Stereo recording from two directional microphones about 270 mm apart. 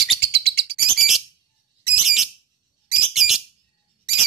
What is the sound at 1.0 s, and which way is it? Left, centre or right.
Bird, centre.